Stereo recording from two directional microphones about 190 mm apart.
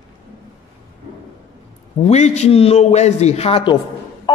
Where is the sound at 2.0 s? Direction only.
35° left (ahead or behind).